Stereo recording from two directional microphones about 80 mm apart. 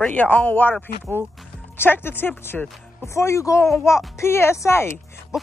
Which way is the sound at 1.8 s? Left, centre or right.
Left.